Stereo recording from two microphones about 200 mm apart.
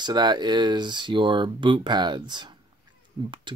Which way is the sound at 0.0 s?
20° right (ahead or behind).